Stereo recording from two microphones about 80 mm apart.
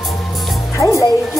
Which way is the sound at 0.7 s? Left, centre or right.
Left.